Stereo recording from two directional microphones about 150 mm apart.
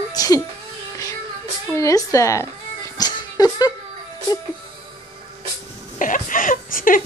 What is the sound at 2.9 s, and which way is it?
Music, 25° left (ahead or behind).